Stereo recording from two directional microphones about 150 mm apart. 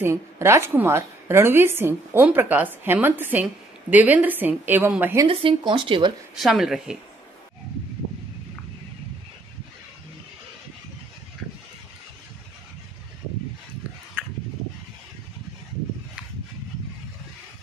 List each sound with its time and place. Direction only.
0.0 s a woman's voice: 15° right (ahead or behind)
5.2 s speech: 35° right (ahead or behind)
6.4 s speech: centre (ahead or behind)
14.2 s dog: 10° right (ahead or behind)